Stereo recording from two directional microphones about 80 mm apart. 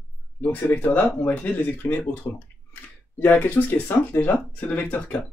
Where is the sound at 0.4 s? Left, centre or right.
Left.